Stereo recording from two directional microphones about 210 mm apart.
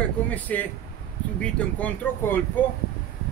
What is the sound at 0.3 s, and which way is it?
A man's voice, 5° left (ahead or behind).